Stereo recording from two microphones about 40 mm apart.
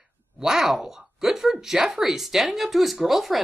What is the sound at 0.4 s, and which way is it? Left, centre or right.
Speech, centre.